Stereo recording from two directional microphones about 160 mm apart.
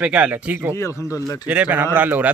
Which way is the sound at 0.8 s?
20° left (ahead or behind).